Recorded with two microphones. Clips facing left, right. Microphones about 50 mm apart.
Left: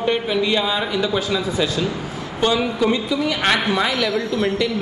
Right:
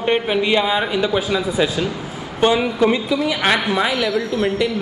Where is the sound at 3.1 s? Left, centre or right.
Centre.